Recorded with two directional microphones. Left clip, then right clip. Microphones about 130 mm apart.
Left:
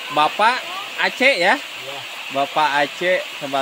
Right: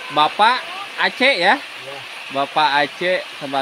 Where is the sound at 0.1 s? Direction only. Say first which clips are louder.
Right 2 dB; 15° right (ahead or behind).